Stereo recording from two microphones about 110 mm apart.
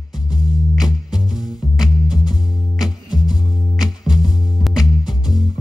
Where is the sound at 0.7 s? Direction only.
5° right (ahead or behind).